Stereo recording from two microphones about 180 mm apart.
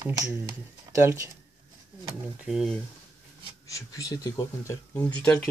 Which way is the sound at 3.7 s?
20° left (ahead or behind).